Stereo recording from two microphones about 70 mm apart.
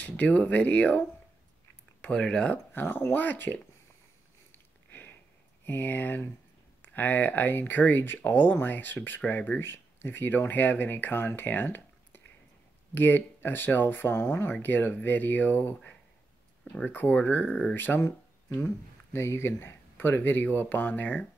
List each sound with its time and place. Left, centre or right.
0.0 s speech: left
2.7 s speech: left
5.7 s speech: left